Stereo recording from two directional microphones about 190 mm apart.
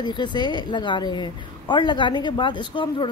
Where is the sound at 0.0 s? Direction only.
25° left (ahead or behind).